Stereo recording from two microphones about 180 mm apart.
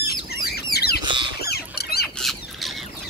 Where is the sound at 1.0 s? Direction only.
25° right (ahead or behind).